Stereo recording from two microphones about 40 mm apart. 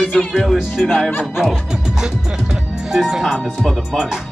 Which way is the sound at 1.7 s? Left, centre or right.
Centre.